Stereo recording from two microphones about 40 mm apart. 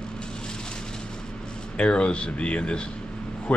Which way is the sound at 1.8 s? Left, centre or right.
Left.